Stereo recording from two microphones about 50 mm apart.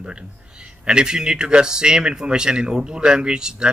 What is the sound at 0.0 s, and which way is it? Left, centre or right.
Speech, centre.